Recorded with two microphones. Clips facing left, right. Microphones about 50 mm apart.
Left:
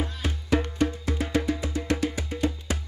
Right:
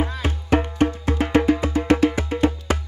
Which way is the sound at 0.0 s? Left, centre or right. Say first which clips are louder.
Right 6 dB; right.